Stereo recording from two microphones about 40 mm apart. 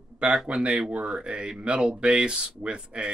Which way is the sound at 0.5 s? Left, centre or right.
Right.